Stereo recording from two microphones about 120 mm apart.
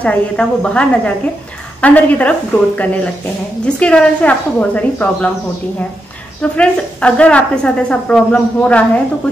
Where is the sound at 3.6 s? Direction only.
10° left (ahead or behind).